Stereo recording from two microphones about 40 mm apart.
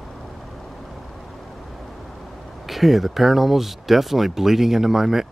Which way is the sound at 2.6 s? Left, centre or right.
Centre.